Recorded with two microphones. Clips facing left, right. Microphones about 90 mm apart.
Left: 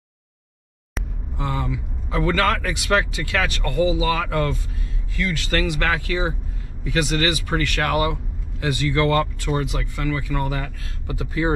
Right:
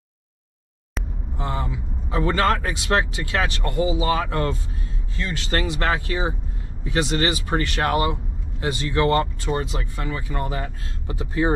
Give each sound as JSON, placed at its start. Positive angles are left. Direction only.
{"t": 1.4, "sound": "speech", "side_deg": -25}